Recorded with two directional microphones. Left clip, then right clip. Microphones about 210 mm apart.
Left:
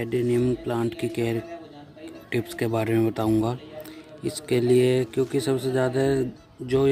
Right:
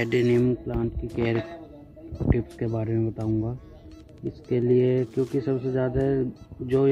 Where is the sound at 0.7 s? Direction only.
15° left (ahead or behind).